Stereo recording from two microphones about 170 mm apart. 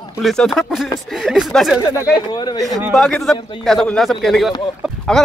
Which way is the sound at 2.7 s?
20° right (ahead or behind).